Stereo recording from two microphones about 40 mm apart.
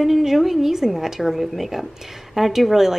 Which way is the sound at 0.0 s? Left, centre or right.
Centre.